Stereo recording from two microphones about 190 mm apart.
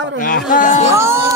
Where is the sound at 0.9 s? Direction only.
15° right (ahead or behind).